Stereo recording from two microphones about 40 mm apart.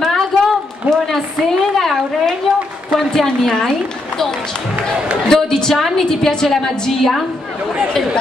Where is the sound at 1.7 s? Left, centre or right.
Centre.